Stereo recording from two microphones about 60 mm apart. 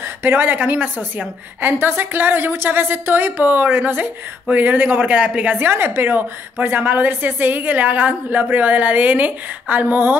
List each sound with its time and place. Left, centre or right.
0.0 s a woman's voice: right
1.7 s a woman's voice: right